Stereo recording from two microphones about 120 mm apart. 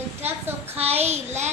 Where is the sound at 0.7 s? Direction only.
60° right (ahead or behind).